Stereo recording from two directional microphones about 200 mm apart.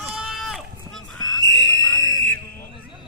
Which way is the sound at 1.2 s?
75° right (ahead or behind).